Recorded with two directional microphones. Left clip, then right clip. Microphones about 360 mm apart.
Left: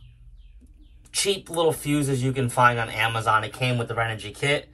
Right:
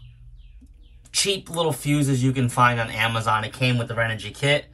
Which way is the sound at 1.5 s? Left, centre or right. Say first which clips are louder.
Left 1 dB; right.